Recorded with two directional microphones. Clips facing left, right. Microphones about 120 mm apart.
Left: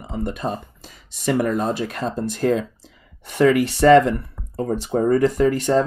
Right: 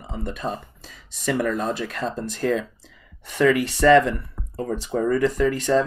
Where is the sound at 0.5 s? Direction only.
20° left (ahead or behind).